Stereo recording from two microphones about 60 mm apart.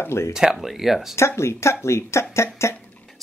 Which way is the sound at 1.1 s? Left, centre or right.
Left.